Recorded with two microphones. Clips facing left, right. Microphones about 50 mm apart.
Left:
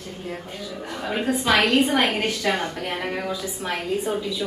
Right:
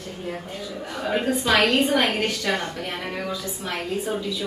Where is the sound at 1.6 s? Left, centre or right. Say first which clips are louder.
Left 1 dB; centre.